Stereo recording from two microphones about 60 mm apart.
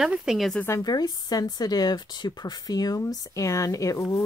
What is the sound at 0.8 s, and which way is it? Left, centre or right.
Speech, left.